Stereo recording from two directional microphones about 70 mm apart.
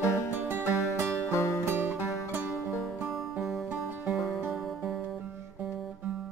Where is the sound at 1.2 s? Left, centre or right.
Left.